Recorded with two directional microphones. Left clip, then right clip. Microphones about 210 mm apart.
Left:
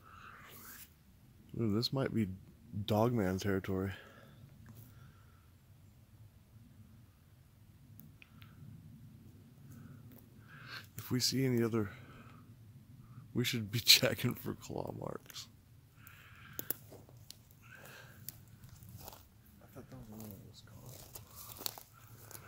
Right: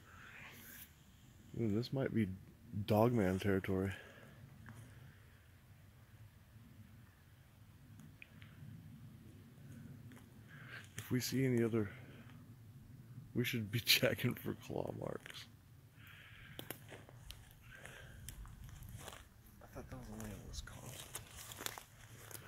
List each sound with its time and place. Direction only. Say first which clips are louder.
1.6 s speech: left 4 dB; 25° left (ahead or behind)
2.8 s speech: left 1 dB; centre (ahead or behind)
10.7 s speech: left 2 dB; 15° left (ahead or behind)
13.3 s speech: left 3 dB; 20° left (ahead or behind)
16.6 s a sound: left 2 dB; 35° left (ahead or behind)
19.7 s a sound: right 1 dB; 10° left (ahead or behind)